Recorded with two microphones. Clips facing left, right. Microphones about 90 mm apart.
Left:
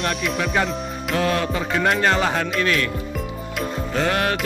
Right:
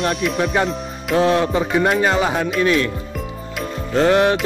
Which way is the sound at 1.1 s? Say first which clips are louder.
Right 6 dB; 25° right (ahead or behind).